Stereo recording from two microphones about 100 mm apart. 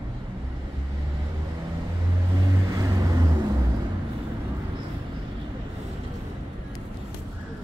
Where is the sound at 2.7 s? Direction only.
35° right (ahead or behind).